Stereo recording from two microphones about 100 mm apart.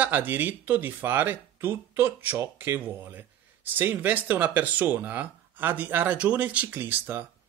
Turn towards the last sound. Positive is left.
turn(degrees=-20)  # may be behind; listen again after turning